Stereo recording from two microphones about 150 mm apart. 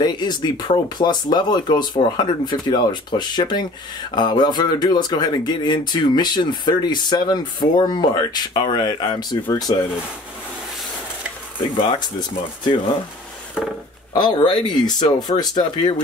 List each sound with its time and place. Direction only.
0.0 s speech: 30° left (ahead or behind)
11.6 s speech: 30° left (ahead or behind)
13.6 s speech: 5° right (ahead or behind)
14.1 s speech: 30° left (ahead or behind)